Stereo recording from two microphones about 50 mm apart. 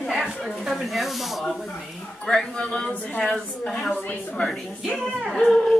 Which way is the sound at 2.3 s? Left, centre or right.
Centre.